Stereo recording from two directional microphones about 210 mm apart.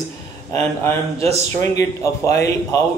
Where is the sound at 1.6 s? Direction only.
15° left (ahead or behind).